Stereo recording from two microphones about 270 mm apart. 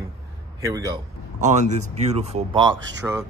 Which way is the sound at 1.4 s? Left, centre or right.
Right.